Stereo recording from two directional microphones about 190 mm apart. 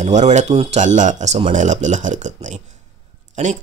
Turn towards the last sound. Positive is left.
turn(degrees=-40)  # may be behind; listen again after turning